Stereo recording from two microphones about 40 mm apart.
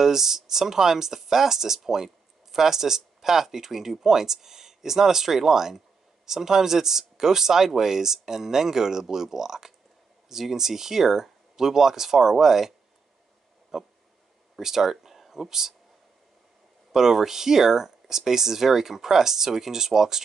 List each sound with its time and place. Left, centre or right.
0.0 s speech: centre
16.9 s speech: centre